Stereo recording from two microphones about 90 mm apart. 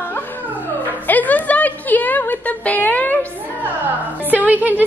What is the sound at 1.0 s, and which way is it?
A woman's voice, 20° left (ahead or behind).